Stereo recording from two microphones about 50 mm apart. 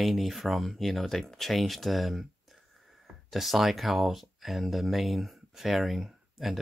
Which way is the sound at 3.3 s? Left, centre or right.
Centre.